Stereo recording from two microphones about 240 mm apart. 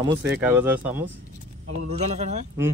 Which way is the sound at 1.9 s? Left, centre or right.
Right.